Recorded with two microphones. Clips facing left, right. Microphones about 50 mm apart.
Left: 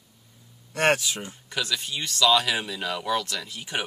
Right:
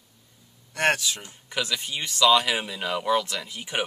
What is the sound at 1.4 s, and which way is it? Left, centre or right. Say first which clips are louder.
Speech: right 1 dB; centre.